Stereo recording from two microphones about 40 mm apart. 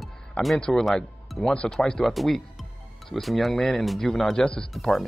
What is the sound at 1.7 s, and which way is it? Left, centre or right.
Speech, centre.